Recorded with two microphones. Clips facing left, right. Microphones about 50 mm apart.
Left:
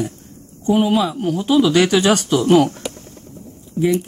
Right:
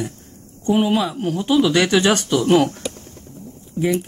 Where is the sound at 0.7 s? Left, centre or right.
Centre.